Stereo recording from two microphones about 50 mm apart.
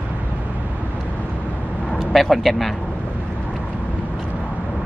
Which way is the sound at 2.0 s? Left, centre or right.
Centre.